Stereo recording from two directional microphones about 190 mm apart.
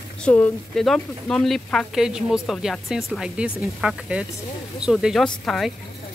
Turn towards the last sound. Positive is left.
turn(degrees=0)  # may be behind; listen again after turning